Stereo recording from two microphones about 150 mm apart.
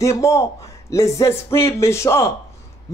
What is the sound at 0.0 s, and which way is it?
A man's voice, 20° left (ahead or behind).